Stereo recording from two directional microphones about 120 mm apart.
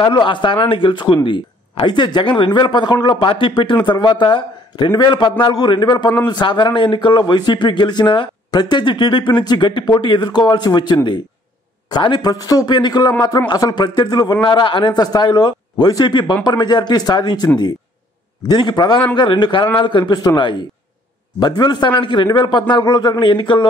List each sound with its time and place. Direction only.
0.0 s speech: 40° left (ahead or behind)
18.5 s speech: 40° left (ahead or behind)